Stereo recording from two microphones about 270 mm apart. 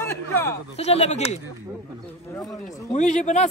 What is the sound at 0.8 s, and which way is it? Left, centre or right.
Speech, left.